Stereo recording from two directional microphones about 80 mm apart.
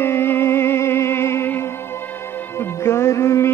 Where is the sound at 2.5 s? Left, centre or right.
Left.